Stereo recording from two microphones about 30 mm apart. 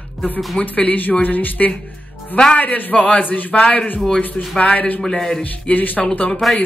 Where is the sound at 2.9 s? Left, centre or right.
Left.